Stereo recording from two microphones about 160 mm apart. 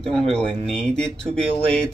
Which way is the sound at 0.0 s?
5° left (ahead or behind).